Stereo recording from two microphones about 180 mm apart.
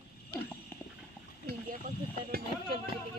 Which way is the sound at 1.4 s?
60° right (ahead or behind).